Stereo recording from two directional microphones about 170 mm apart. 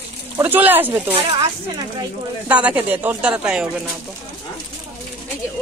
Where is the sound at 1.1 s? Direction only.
35° right (ahead or behind).